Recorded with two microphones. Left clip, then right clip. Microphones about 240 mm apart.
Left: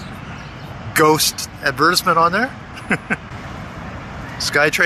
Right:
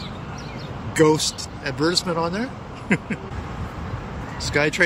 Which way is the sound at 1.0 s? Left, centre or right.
Centre.